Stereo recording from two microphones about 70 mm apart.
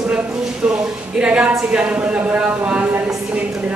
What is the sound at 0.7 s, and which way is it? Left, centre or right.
A woman's voice, centre.